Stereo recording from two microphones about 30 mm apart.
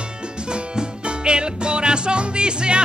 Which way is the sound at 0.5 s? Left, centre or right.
Right.